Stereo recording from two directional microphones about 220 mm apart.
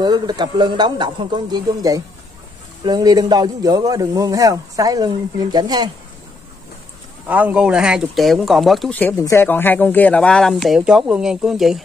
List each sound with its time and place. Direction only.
0.0 s a man's voice: 20° right (ahead or behind)
7.2 s speech: 5° right (ahead or behind)